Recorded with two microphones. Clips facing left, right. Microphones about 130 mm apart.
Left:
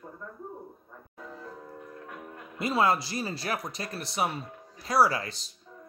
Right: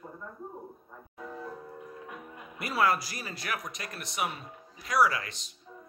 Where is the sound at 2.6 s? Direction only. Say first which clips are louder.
Left 2 dB; 25° left (ahead or behind).